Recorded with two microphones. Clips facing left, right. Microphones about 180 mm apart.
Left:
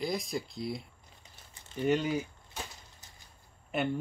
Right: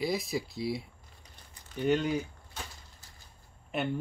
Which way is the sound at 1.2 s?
25° left (ahead or behind).